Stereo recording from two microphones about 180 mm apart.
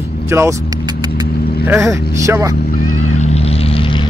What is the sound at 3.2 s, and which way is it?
Vehicle, 35° left (ahead or behind).